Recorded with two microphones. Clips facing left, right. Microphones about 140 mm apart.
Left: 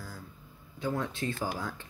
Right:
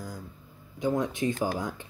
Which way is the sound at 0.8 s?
15° right (ahead or behind).